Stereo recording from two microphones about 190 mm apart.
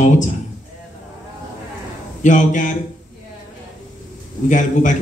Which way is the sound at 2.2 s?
40° left (ahead or behind).